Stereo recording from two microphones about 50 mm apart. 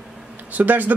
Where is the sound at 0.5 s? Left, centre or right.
Right.